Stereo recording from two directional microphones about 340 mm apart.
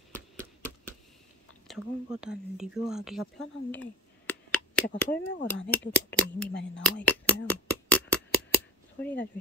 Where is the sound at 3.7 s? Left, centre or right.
Centre.